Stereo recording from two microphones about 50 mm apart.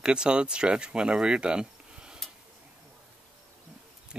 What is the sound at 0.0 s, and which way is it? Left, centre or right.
Speech, centre.